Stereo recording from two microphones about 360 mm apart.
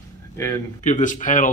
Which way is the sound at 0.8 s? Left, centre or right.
Left.